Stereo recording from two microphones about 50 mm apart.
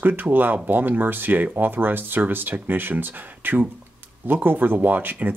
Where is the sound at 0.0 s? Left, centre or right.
Right.